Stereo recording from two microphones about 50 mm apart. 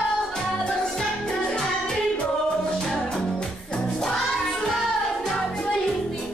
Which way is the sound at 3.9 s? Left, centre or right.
Centre.